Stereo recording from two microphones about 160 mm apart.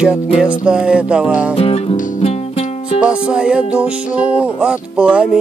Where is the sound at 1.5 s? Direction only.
35° left (ahead or behind).